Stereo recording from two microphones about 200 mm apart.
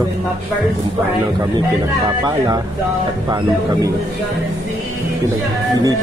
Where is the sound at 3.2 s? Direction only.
15° right (ahead or behind).